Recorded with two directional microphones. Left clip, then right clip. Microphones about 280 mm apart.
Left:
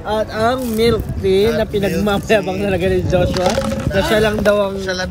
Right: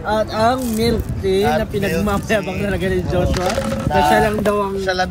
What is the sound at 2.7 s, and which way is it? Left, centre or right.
Speech, left.